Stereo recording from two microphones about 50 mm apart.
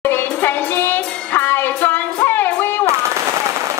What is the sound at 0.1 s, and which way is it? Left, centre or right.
Music, left.